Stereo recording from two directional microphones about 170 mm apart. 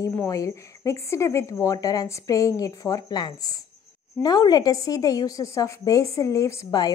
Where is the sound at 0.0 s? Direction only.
15° left (ahead or behind).